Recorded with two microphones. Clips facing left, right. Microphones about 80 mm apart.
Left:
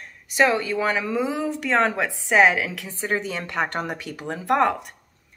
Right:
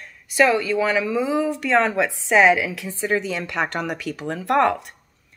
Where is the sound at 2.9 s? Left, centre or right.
Left.